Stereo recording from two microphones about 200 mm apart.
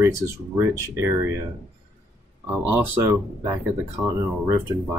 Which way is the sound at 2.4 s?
10° right (ahead or behind).